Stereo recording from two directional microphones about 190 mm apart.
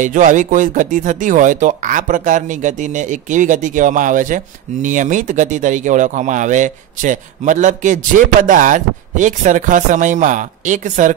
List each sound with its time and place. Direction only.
0.0 s speech: 40° right (ahead or behind)